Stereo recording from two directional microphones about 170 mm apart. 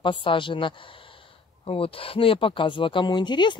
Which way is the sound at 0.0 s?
30° left (ahead or behind).